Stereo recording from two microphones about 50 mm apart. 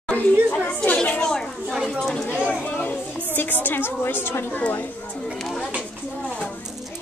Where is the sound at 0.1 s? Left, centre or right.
Left; by 2.2 s centre.